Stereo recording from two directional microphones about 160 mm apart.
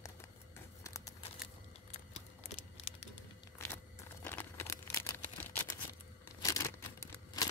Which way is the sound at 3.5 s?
10° left (ahead or behind).